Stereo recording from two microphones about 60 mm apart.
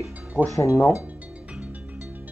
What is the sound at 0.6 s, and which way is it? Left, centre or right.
Speech, left.